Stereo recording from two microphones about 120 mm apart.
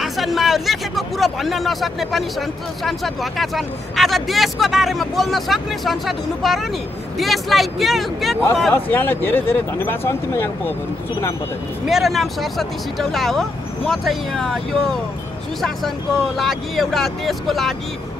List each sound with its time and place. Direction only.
0.0 s speech: centre (ahead or behind)
8.7 s speech: 15° left (ahead or behind)
11.8 s speech: centre (ahead or behind)